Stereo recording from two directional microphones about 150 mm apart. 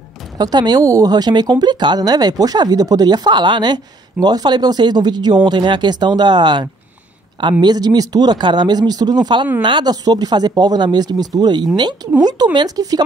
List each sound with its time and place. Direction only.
0.4 s speech: 25° right (ahead or behind)